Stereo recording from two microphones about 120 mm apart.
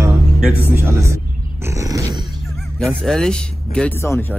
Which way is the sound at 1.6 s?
25° right (ahead or behind).